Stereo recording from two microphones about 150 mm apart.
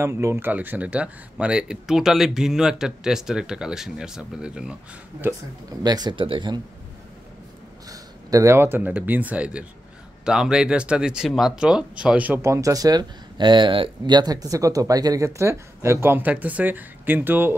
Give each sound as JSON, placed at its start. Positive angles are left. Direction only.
{"t": 0.0, "sound": "speech", "side_deg": -20}
{"t": 5.8, "sound": "speech", "side_deg": -25}
{"t": 7.9, "sound": "speech", "side_deg": -25}